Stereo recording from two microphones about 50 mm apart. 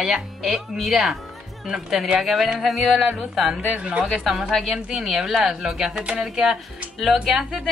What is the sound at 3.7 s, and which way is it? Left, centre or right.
Speech, right.